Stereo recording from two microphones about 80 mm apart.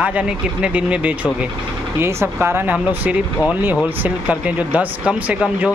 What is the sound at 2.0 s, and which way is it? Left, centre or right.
Speech, right.